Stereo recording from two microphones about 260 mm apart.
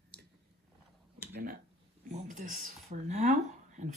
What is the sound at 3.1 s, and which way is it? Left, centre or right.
Speech, right.